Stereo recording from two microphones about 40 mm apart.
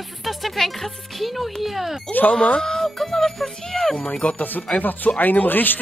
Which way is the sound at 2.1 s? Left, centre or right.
Left.